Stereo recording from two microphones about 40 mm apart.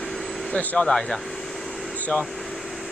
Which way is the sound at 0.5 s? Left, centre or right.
Left.